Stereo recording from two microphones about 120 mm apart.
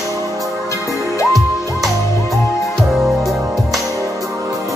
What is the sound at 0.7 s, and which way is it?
Music, 25° left (ahead or behind).